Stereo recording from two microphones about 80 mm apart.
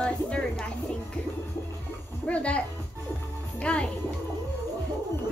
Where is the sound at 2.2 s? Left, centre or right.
Centre.